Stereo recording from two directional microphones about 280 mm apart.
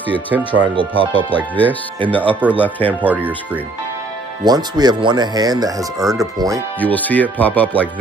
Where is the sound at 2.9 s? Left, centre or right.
Centre.